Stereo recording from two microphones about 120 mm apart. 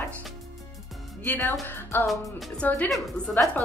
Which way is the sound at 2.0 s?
Centre (ahead or behind).